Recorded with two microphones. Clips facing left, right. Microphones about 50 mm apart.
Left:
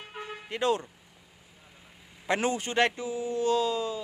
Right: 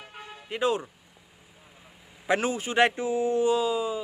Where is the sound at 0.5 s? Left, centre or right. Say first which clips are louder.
Right 1 dB; centre.